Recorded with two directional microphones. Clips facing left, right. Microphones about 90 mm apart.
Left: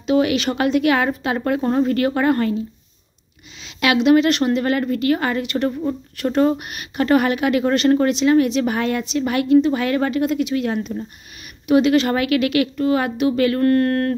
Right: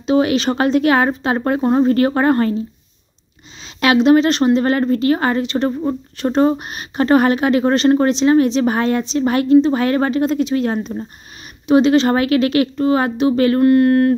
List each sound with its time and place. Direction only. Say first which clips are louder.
0.0 s speech: right 2 dB; 30° right (ahead or behind)
3.6 s speech: right 3 dB; 35° right (ahead or behind)
13.6 s speech: right 5 dB; 15° right (ahead or behind)